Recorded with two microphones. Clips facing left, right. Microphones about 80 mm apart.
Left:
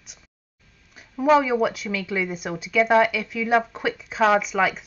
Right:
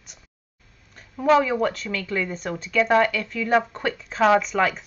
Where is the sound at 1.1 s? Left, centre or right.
Centre.